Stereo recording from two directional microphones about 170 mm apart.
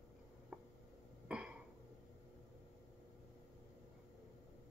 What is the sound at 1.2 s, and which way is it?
Throat clearing, 5° right (ahead or behind).